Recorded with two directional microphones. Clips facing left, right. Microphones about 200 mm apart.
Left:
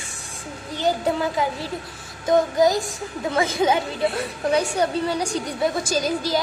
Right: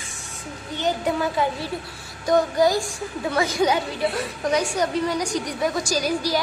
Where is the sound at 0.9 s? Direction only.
35° left (ahead or behind).